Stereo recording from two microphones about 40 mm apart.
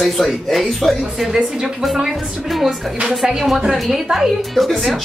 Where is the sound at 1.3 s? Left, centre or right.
Centre.